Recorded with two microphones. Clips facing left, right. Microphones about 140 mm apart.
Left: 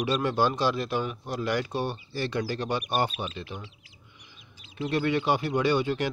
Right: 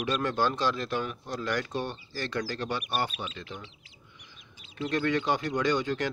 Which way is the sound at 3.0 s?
30° left (ahead or behind).